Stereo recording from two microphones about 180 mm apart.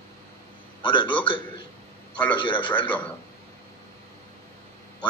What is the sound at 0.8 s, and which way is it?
A man's voice, 25° left (ahead or behind).